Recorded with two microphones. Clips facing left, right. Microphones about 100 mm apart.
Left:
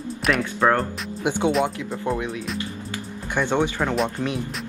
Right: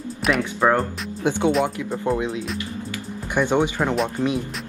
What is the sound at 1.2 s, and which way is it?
Speech, 15° left (ahead or behind).